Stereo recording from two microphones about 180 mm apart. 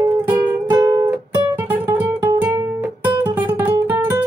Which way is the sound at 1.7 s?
10° right (ahead or behind).